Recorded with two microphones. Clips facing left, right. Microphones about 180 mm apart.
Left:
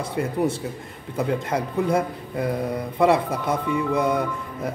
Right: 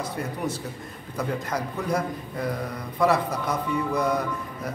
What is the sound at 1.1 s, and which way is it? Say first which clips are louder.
A man's voice: left 5 dB; 25° left (ahead or behind).